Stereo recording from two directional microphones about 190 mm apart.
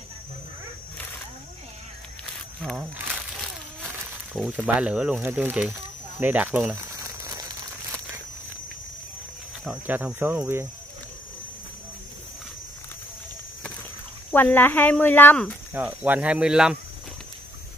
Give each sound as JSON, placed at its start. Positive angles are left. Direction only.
{"t": 4.3, "sound": "speech", "side_deg": 0}
{"t": 9.7, "sound": "speech", "side_deg": -5}
{"t": 14.3, "sound": "speech", "side_deg": 10}
{"t": 15.7, "sound": "speech", "side_deg": -10}